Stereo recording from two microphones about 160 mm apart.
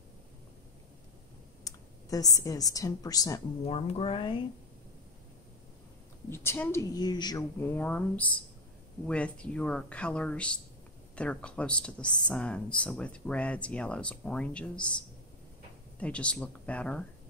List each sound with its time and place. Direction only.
1.6 s a woman's voice: 20° left (ahead or behind)
3.6 s speech: 40° left (ahead or behind)
6.3 s a woman's voice: 15° left (ahead or behind)
7.6 s speech: 10° left (ahead or behind)
16.0 s speech: 5° left (ahead or behind)